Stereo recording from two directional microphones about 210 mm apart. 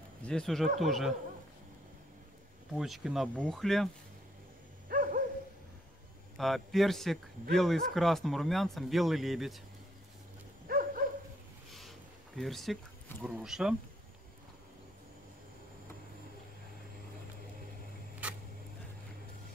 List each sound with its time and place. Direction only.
0.2 s speech: 5° left (ahead or behind)
2.8 s speech: centre (ahead or behind)
4.8 s dog: 40° right (ahead or behind)
6.3 s speech: centre (ahead or behind)
10.7 s dog: 40° right (ahead or behind)
12.4 s speech: centre (ahead or behind)